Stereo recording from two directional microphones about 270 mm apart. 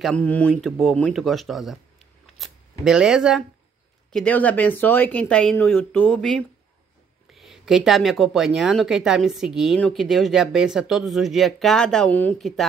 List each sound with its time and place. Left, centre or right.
0.0 s speech: centre